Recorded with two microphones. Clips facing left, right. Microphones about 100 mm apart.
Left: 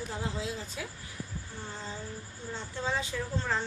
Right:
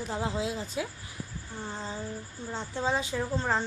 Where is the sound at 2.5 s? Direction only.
20° right (ahead or behind).